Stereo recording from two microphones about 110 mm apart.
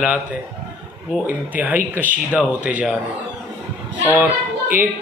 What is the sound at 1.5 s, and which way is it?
Speech, 15° right (ahead or behind).